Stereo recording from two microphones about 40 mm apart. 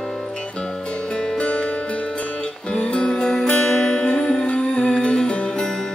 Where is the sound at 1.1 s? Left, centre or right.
Left.